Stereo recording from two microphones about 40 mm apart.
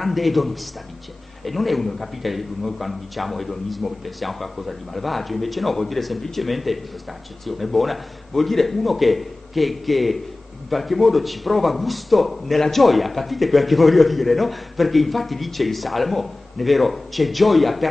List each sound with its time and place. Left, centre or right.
0.0 s speech: centre